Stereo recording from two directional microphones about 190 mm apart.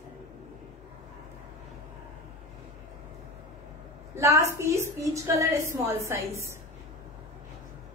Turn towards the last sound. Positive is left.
turn(degrees=-15)  # may be behind; listen again after turning